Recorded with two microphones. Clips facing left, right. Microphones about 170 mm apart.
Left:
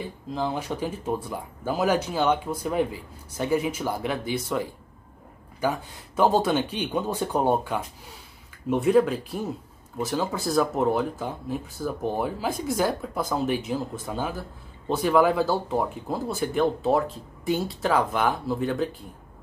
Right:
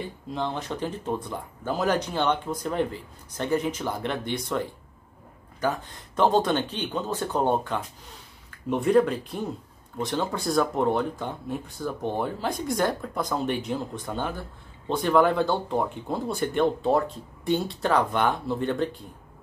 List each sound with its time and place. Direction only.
0.0 s speech: centre (ahead or behind)